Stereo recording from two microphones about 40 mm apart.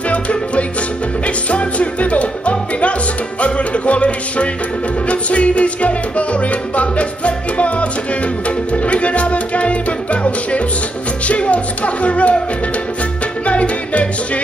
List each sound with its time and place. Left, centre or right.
0.1 s music: left
13.5 s music: left